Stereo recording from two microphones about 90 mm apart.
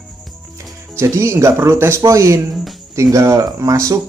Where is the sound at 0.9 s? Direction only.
30° right (ahead or behind).